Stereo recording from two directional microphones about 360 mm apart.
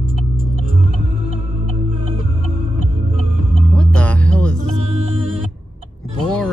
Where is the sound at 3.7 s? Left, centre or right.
Centre.